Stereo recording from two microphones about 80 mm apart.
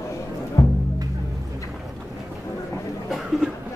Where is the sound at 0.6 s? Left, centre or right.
Left.